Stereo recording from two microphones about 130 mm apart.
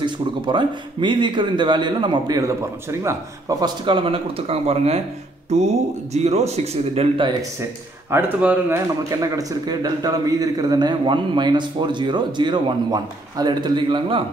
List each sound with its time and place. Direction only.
0.0 s a man's voice: 35° right (ahead or behind)
3.8 s speech: 40° right (ahead or behind)
8.1 s speech: 15° right (ahead or behind)
9.1 s a man's voice: 25° right (ahead or behind)